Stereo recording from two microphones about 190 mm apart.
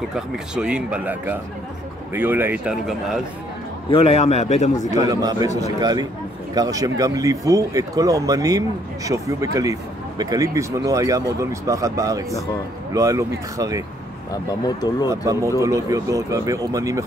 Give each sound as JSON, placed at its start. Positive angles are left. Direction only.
{"t": 0.1, "sound": "speech", "side_deg": -5}
{"t": 3.9, "sound": "a man's voice", "side_deg": 30}
{"t": 5.0, "sound": "a man's voice", "side_deg": -20}
{"t": 14.3, "sound": "speech", "side_deg": 20}
{"t": 15.0, "sound": "speech", "side_deg": -15}